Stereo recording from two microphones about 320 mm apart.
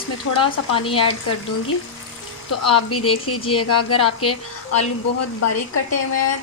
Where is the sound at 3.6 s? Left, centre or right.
Left.